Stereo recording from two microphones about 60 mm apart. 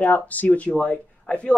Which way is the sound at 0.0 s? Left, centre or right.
Left.